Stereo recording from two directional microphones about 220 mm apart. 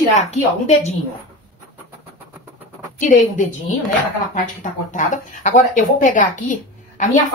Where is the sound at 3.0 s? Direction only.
35° left (ahead or behind).